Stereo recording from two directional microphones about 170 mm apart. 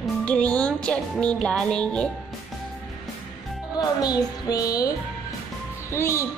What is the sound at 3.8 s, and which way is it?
Music, 20° left (ahead or behind).